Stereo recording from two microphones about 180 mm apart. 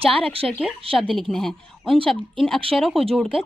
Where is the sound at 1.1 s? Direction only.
Centre (ahead or behind).